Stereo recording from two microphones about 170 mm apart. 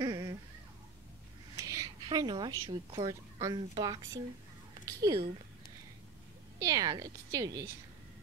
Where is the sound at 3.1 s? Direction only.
20° right (ahead or behind).